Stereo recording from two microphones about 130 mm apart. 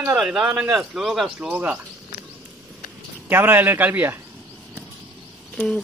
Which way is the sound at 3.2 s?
15° right (ahead or behind).